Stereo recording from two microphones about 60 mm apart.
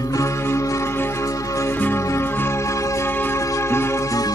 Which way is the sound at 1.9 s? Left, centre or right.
Left.